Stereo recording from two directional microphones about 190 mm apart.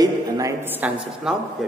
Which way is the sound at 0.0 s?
15° right (ahead or behind).